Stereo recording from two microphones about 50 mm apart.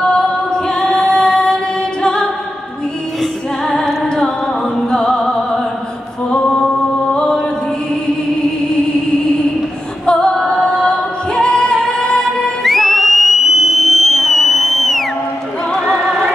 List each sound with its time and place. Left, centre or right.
0.7 s music: centre
3.2 s music: centre
7.2 s music: centre
10.0 s music: centre
12.6 s theremin: centre